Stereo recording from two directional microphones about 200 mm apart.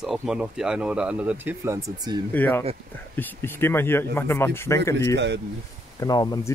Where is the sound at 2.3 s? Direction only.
10° left (ahead or behind).